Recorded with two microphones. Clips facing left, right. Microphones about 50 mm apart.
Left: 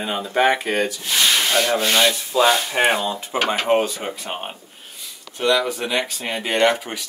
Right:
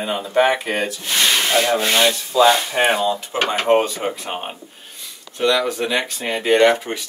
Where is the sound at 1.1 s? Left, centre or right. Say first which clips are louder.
Right 2 dB; centre.